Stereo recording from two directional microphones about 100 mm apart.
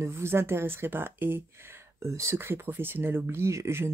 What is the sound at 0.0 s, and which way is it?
Speech, 25° right (ahead or behind).